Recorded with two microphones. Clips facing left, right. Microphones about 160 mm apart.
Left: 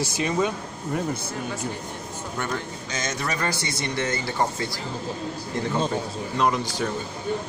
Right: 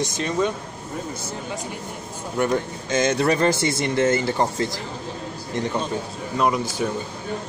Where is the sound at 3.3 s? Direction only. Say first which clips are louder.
Right 7 dB; 25° right (ahead or behind).